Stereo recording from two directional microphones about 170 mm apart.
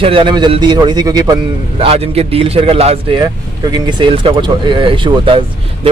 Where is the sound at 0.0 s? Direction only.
30° right (ahead or behind).